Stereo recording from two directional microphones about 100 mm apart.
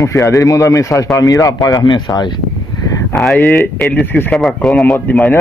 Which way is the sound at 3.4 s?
25° left (ahead or behind).